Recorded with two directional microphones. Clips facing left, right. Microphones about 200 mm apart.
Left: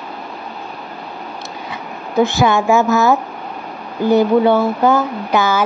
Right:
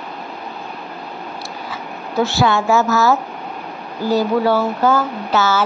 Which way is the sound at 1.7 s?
15° left (ahead or behind).